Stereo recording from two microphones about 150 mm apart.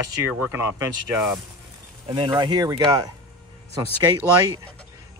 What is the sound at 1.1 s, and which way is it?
Speech, centre (ahead or behind).